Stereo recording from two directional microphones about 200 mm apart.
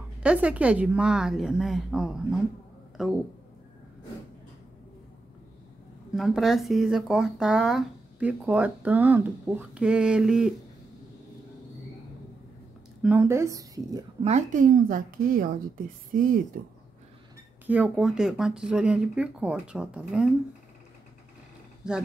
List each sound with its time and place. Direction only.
0.2 s speech: 5° right (ahead or behind)
6.1 s speech: centre (ahead or behind)
13.0 s speech: 10° right (ahead or behind)
14.2 s a woman's voice: 35° right (ahead or behind)
17.6 s speech: 5° right (ahead or behind)
21.8 s speech: 5° right (ahead or behind)